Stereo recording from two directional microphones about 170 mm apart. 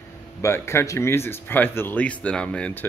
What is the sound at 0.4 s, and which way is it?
Speech, 15° left (ahead or behind).